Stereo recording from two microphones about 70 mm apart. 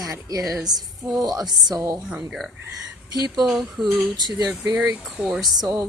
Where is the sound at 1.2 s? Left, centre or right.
Right.